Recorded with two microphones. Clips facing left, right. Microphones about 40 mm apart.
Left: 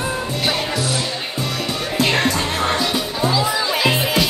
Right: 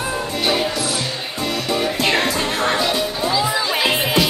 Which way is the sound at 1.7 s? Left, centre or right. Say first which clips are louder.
Right 1 dB; centre.